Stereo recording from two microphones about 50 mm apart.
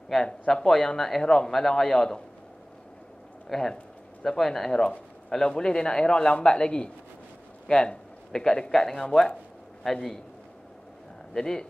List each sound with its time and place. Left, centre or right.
0.1 s a man's voice: centre
3.4 s a man's voice: centre
11.3 s a man's voice: centre